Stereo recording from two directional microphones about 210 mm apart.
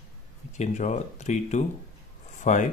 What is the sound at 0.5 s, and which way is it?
Speech, 35° left (ahead or behind).